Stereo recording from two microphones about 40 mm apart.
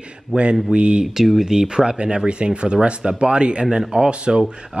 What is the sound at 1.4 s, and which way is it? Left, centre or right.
Speech, centre.